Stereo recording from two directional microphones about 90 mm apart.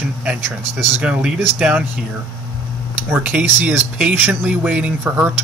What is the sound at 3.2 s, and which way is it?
Speech, 15° right (ahead or behind).